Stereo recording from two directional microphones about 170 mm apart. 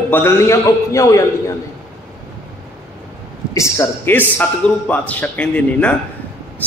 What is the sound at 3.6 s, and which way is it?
A man's voice, 15° left (ahead or behind).